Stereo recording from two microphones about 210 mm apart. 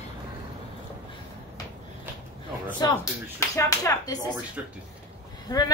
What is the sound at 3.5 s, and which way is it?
Speech, 15° left (ahead or behind).